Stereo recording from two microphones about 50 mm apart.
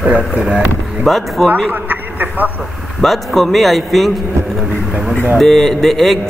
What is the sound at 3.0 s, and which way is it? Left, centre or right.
A man's voice, centre.